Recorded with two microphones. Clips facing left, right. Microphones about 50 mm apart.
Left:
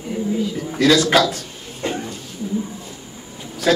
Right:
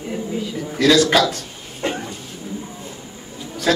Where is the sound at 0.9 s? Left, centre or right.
Centre.